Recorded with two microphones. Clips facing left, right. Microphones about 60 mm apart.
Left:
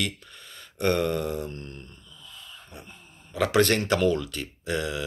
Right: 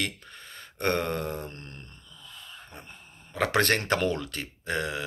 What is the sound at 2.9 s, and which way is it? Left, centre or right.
Speech, right.